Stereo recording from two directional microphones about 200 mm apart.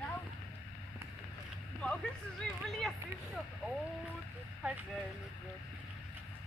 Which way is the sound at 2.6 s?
Centre (ahead or behind).